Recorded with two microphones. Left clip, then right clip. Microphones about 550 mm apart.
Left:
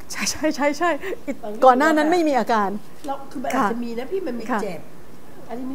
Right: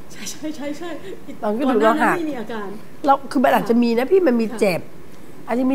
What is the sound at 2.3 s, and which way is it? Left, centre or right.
Speech, left.